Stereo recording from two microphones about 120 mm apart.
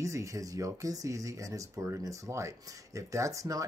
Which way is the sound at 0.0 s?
25° right (ahead or behind).